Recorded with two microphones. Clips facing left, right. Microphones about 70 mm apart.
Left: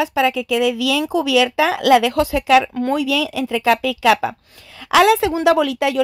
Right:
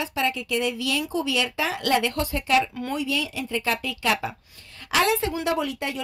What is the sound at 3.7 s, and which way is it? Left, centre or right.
Speech, left.